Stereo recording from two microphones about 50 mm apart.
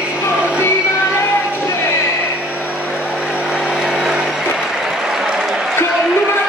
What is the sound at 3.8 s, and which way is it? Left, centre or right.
Music, centre.